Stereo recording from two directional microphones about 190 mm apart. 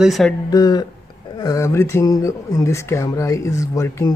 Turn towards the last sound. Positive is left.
turn(degrees=15)  # may be behind; listen again after turning